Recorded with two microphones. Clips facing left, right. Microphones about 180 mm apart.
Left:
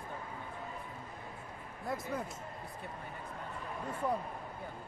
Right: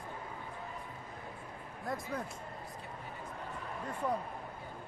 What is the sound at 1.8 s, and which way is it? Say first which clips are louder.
Speech: left 1 dB; centre (ahead or behind).